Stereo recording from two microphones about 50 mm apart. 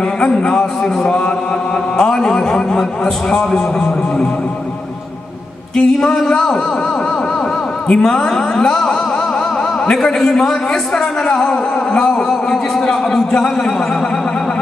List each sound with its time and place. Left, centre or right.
0.2 s a man's voice: centre
5.8 s a man's voice: centre
7.9 s a man's voice: centre